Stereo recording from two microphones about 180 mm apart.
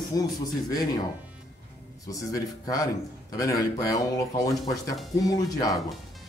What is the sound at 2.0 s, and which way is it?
Speech, 20° left (ahead or behind).